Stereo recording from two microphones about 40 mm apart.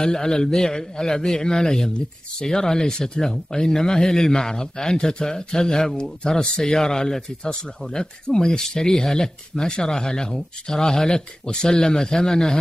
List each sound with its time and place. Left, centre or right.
0.0 s speech: centre